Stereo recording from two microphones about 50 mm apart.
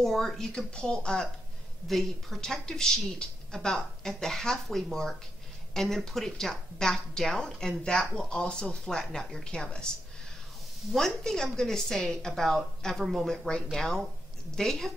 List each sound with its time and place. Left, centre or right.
0.0 s speech: centre
0.6 s a woman's voice: centre
1.9 s a woman's voice: centre
10.9 s a woman's voice: centre